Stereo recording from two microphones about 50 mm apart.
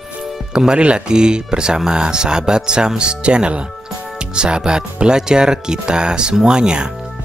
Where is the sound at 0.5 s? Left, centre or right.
Centre.